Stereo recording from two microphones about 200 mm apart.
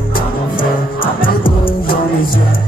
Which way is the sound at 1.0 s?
25° left (ahead or behind).